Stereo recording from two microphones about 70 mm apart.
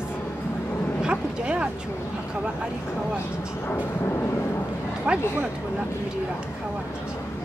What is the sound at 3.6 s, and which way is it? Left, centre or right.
Vehicle, left.